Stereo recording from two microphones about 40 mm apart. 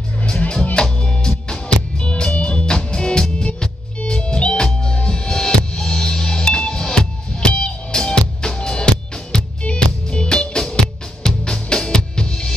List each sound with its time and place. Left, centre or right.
0.7 s music: left